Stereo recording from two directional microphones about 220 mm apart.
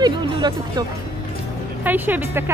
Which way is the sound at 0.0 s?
20° right (ahead or behind).